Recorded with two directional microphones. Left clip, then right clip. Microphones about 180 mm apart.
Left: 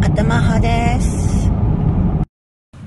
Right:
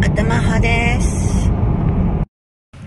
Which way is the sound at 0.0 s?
Centre (ahead or behind).